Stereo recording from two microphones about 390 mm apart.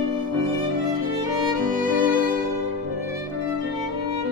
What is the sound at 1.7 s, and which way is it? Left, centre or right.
Music, right.